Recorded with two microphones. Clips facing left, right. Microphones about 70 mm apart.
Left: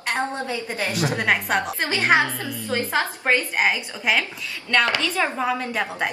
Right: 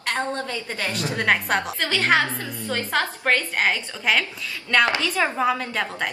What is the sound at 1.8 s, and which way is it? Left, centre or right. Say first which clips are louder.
A woman's voice: left 1 dB; centre.